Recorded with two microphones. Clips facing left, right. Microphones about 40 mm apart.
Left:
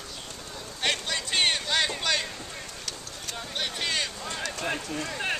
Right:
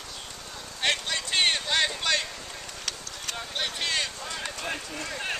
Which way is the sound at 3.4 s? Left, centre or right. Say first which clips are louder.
Even; centre.